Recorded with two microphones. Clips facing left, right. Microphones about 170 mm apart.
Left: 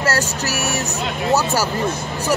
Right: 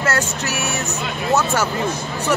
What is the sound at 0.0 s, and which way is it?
Speech, 35° left (ahead or behind).